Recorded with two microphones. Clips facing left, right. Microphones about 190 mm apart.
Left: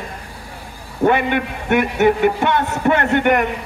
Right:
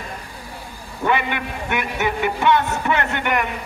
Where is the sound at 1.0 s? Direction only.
50° left (ahead or behind).